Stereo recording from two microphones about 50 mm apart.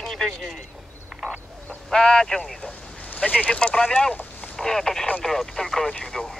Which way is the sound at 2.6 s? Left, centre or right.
Left.